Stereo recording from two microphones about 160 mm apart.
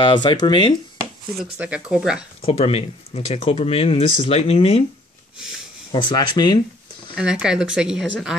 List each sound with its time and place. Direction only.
0.0 s speech: 30° left (ahead or behind)
1.4 s a woman's voice: 5° right (ahead or behind)
2.4 s speech: 40° left (ahead or behind)
5.9 s speech: 30° left (ahead or behind)
7.2 s a woman's voice: 5° right (ahead or behind)